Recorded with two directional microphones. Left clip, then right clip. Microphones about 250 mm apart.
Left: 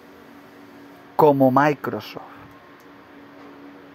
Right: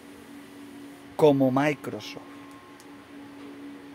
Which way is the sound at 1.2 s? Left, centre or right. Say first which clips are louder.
Left 6 dB; centre.